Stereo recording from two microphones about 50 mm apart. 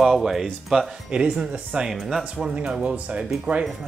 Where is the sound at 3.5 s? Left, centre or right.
Right.